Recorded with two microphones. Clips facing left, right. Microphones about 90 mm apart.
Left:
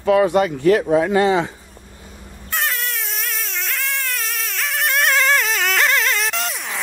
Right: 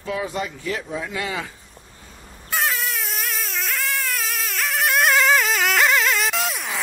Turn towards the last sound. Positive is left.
turn(degrees=0)  # may be behind; listen again after turning